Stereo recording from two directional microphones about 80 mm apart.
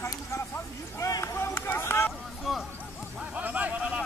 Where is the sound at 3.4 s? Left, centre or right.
Centre.